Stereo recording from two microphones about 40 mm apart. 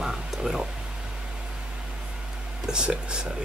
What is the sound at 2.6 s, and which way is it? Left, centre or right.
Speech, right.